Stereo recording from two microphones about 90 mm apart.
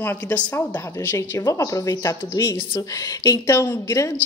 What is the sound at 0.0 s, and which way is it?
A woman's voice, 25° left (ahead or behind).